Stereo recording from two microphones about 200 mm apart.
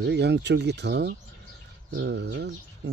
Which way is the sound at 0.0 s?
55° right (ahead or behind).